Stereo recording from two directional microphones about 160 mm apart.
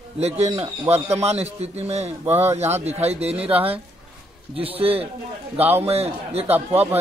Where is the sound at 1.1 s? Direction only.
40° right (ahead or behind).